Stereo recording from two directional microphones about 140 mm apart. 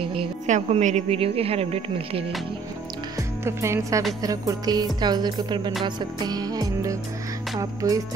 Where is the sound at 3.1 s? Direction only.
20° right (ahead or behind).